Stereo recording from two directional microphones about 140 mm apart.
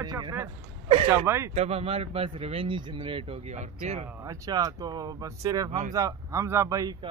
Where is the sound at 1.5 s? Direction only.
50° right (ahead or behind).